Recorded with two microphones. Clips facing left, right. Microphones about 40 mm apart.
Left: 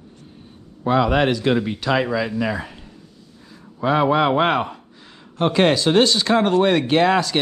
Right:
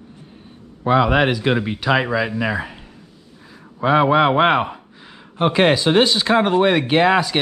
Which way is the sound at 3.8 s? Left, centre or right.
Centre.